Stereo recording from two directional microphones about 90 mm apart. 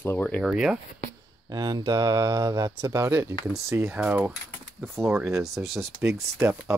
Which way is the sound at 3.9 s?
15° right (ahead or behind).